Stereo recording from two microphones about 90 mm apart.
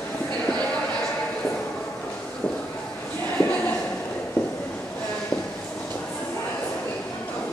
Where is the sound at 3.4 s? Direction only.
20° left (ahead or behind).